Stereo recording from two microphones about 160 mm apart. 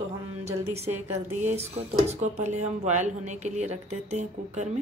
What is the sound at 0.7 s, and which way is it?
A woman's voice, 40° right (ahead or behind).